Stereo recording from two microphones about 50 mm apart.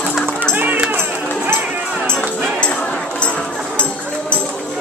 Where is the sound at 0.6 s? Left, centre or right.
Right.